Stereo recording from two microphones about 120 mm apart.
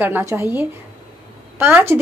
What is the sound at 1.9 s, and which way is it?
Speech, 20° right (ahead or behind).